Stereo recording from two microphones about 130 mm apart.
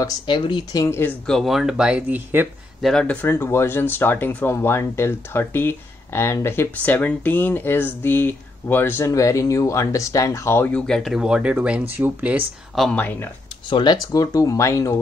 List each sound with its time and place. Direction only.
0.0 s speech: 35° left (ahead or behind)
0.8 s speech: 20° left (ahead or behind)
1.2 s speech: centre (ahead or behind); by 2.4 s 15° right (ahead or behind)
2.8 s speech: 5° left (ahead or behind); by 12.4 s 10° right (ahead or behind)
12.7 s speech: 5° left (ahead or behind)
13.0 s speech: 15° left (ahead or behind)
13.7 s speech: 35° left (ahead or behind)